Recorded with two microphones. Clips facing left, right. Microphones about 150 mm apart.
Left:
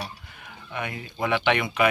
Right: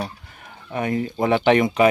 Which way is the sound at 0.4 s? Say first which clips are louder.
Right 7 dB; 40° right (ahead or behind).